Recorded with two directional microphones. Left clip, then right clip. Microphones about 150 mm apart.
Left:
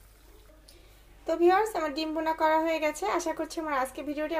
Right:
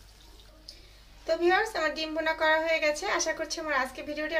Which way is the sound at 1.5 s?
20° left (ahead or behind).